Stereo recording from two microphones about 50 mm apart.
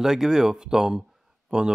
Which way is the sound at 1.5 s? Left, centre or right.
Right.